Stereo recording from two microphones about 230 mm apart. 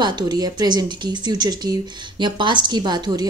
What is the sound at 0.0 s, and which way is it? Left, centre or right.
Speech, centre.